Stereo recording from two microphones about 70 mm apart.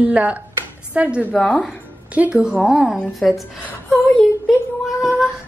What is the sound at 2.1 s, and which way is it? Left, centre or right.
Speech, right.